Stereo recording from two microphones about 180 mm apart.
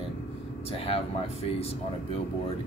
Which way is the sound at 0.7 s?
30° left (ahead or behind).